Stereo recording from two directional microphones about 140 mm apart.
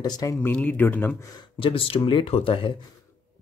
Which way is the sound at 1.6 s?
40° left (ahead or behind).